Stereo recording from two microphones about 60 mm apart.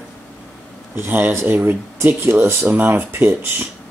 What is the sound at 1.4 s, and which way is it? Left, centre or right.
Speech, right.